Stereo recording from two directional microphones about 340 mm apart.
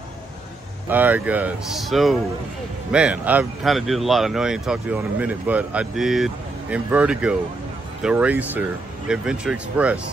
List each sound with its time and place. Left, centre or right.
0.8 s speech: centre